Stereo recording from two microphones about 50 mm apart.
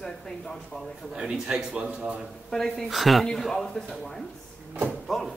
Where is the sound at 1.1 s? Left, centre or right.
Centre.